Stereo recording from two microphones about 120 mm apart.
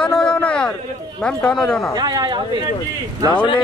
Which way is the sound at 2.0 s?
35° right (ahead or behind).